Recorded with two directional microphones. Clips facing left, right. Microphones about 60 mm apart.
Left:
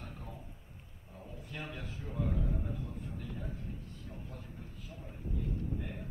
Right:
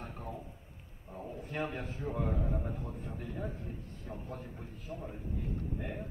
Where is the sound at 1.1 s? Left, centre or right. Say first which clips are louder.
Right 7 dB; right.